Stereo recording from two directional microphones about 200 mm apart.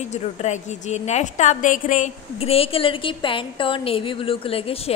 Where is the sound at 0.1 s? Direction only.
35° left (ahead or behind).